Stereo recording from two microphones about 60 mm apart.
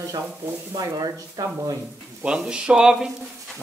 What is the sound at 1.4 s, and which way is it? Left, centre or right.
Speech, right.